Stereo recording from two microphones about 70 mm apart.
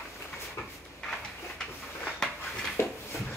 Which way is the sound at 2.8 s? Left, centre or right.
Left.